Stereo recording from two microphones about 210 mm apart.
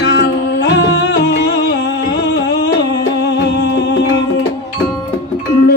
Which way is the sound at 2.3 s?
55° left (ahead or behind).